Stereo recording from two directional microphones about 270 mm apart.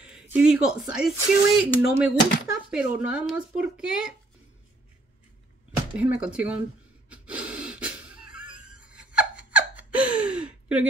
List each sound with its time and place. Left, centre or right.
0.0 s speech: centre
1.8 s speech: left
2.7 s speech: centre
5.9 s speech: centre
7.1 s gasp: centre
8.5 s laughter: centre